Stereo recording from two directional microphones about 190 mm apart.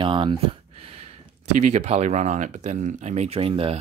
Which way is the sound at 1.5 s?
35° right (ahead or behind).